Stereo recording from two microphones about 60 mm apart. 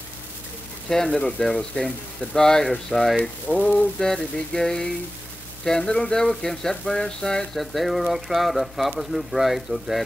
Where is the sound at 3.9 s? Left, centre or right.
Centre.